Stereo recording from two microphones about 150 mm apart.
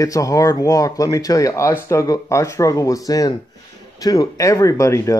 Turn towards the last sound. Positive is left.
turn(degrees=20)  # may be behind; listen again after turning